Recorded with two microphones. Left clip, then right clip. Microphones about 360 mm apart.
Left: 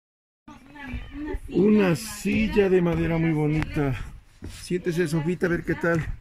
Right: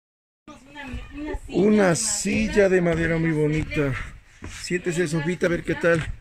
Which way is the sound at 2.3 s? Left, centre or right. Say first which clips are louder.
Right 1 dB; right.